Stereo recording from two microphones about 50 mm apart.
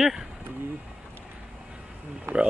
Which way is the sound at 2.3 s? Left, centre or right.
Right.